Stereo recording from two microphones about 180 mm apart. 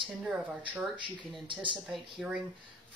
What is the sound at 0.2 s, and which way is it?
Speech, 5° right (ahead or behind).